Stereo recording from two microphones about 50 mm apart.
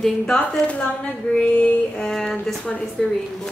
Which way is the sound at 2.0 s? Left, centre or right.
Centre.